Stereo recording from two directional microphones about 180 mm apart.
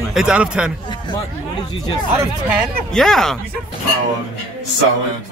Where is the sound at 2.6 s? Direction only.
Centre (ahead or behind).